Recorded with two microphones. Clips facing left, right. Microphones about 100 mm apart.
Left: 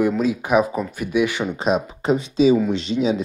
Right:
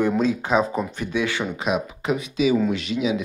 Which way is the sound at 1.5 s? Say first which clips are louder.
Left 4 dB; 35° left (ahead or behind).